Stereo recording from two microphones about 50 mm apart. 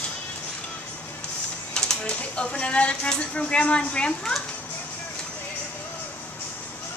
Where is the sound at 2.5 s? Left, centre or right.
Left.